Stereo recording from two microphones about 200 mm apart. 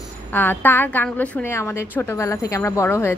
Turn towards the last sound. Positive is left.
turn(degrees=10)  # may be behind; listen again after turning